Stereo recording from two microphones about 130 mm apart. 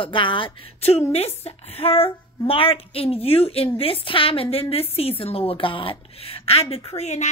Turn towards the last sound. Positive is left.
turn(degrees=60)  # may be behind; listen again after turning